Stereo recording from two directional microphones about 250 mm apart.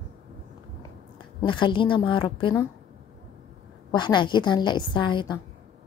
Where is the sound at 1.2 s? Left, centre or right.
Centre.